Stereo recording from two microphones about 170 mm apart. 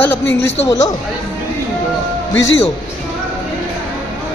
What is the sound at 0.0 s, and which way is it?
Speech, 10° left (ahead or behind).